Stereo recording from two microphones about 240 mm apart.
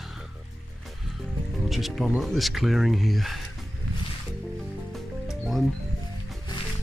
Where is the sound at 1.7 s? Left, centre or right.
Centre.